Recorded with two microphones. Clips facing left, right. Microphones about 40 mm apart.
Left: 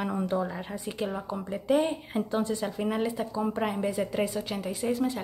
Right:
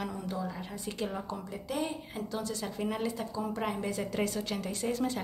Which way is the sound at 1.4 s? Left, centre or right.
Left.